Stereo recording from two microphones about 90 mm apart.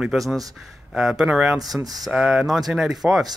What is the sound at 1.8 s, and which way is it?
Speech, 45° right (ahead or behind).